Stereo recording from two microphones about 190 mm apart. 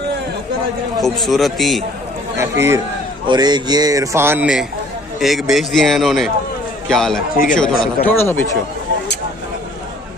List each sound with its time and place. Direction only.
1.0 s a man's voice: centre (ahead or behind)
2.3 s a man's voice: 15° right (ahead or behind); by 7.2 s centre (ahead or behind)
7.3 s speech: 45° left (ahead or behind)
8.1 s speech: 10° left (ahead or behind)